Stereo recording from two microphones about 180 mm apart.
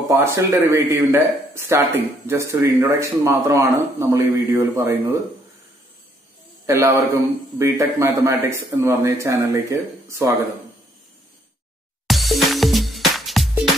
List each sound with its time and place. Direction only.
0.1 s a man's voice: 15° right (ahead or behind)
6.6 s a man's voice: 15° right (ahead or behind)
12.1 s music: centre (ahead or behind)